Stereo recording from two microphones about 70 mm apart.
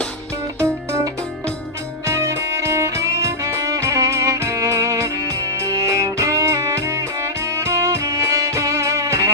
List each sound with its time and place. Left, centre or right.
2.0 s music: right